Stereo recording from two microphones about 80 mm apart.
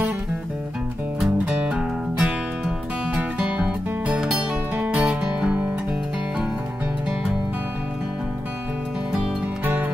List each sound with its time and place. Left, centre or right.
1.2 s music: centre